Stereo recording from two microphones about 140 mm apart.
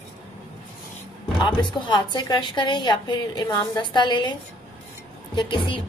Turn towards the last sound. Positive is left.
turn(degrees=35)  # may be behind; listen again after turning